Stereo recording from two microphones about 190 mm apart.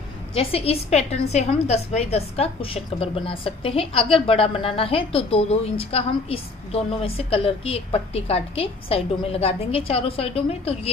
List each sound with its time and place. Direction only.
0.3 s a woman's voice: 30° left (ahead or behind)